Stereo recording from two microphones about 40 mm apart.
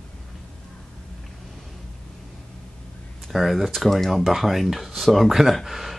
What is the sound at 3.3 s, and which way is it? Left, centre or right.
Speech, centre.